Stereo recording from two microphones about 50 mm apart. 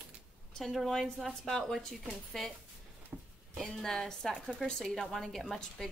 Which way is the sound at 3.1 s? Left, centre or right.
Right.